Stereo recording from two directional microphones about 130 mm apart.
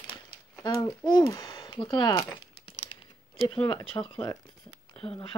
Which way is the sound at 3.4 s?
45° left (ahead or behind).